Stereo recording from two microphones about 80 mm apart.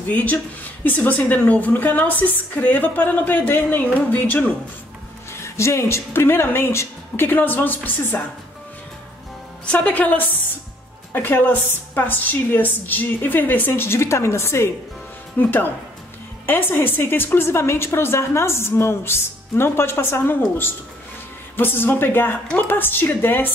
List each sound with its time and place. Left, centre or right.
0.1 s a woman's voice: centre
5.3 s a woman's voice: left
9.7 s a woman's voice: centre